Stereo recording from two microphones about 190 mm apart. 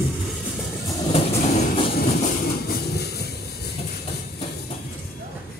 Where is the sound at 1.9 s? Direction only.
50° left (ahead or behind).